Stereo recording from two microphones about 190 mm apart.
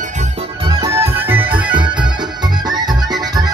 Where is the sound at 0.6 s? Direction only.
15° right (ahead or behind).